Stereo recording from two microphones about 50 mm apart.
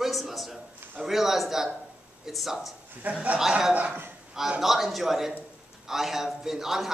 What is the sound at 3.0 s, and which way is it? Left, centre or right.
Speech, right.